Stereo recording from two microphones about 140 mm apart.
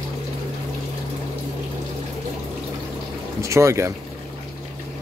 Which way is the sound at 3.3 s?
20° right (ahead or behind).